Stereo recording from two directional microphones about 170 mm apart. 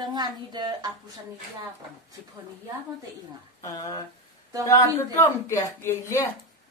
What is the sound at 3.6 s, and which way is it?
A woman's voice, 20° left (ahead or behind).